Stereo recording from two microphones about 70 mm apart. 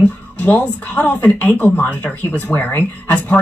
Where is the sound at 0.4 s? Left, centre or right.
Left.